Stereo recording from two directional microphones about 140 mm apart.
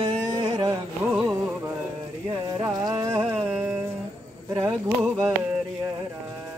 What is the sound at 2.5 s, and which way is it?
Music, 25° right (ahead or behind).